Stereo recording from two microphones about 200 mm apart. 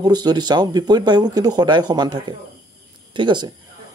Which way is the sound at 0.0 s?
20° right (ahead or behind).